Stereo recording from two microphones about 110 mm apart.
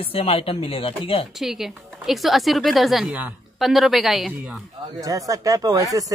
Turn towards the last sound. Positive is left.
turn(degrees=-30)  # may be behind; listen again after turning